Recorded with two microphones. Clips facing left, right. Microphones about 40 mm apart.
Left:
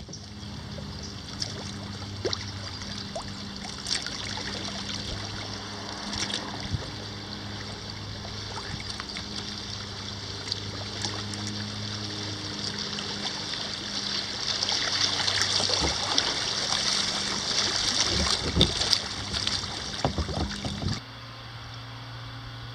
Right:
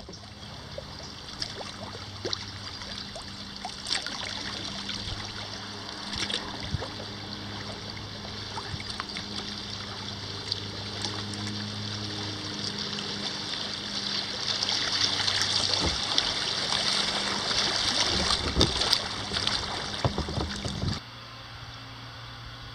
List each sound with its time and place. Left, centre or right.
2.2 s a sound: centre
3.9 s trickle: centre
6.0 s boat: centre
6.4 s boat: centre
8.5 s a sound: centre
11.0 s boat: centre
11.5 s music: centre
18.7 s boat: centre